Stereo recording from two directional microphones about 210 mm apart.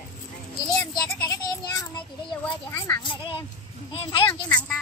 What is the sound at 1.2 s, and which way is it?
Child singing, 10° left (ahead or behind).